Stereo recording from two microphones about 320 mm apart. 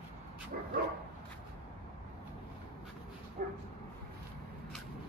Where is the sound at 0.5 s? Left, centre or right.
Right.